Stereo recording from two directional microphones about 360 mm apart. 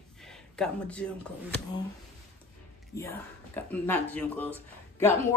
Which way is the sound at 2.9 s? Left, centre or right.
Left.